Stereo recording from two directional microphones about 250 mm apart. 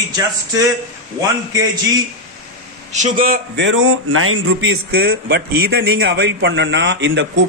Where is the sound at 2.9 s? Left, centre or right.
Right.